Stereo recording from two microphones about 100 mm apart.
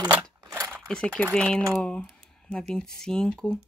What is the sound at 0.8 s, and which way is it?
Speech, 10° left (ahead or behind).